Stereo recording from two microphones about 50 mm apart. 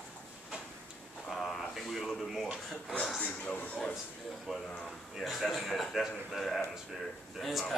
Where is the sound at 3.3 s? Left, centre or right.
Left.